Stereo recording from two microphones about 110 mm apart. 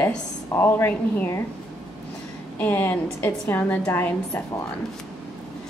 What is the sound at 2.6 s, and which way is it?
A woman's voice, 20° left (ahead or behind).